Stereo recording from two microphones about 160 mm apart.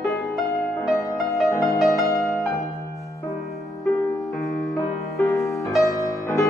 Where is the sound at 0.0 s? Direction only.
Centre (ahead or behind).